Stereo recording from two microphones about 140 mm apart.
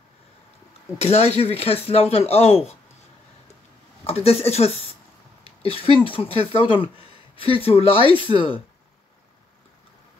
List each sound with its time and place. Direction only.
0.9 s speech: 50° left (ahead or behind)
4.0 s speech: 45° left (ahead or behind)
5.4 s a sound: 45° left (ahead or behind)
6.5 s speech: 40° left (ahead or behind)